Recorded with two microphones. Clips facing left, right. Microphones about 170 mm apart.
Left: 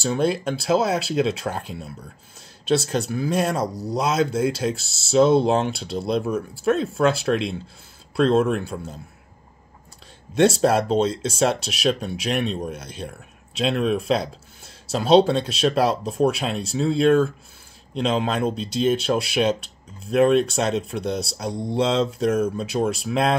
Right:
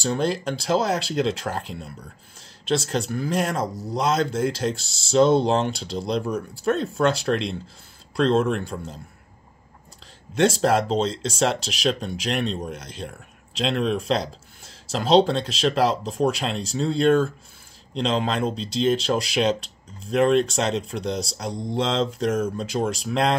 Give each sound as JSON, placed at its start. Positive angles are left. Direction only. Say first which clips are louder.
{"t": 0.0, "sound": "speech", "louder": "left 2 dB", "side_deg": 5}
{"t": 2.9, "sound": "speech", "louder": "left 2 dB", "side_deg": 5}
{"t": 3.6, "sound": "speech", "louder": "left 2 dB", "side_deg": 35}
{"t": 3.9, "sound": "speech", "louder": "left 1 dB", "side_deg": 5}
{"t": 10.6, "sound": "speech", "louder": "left 2 dB", "side_deg": 10}